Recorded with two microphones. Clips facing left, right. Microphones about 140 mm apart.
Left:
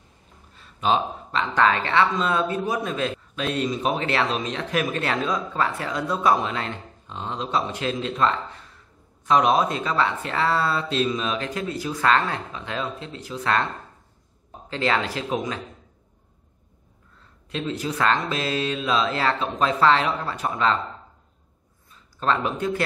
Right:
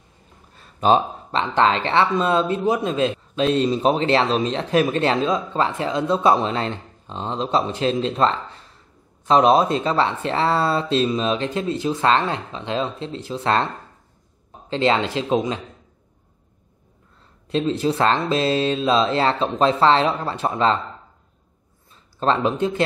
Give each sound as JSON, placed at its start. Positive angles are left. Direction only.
{"t": 0.6, "sound": "a sound", "side_deg": -45}
{"t": 1.4, "sound": "speech", "side_deg": -25}
{"t": 14.7, "sound": "speech", "side_deg": -25}
{"t": 17.5, "sound": "speech", "side_deg": -30}
{"t": 22.2, "sound": "speech", "side_deg": -25}